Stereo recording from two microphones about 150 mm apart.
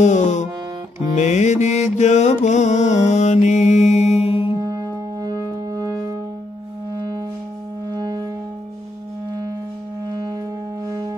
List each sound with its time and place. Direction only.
0.0 s music: 55° left (ahead or behind)
4.6 s music: 25° right (ahead or behind)
7.9 s music: 25° right (ahead or behind)
10.9 s music: 25° right (ahead or behind)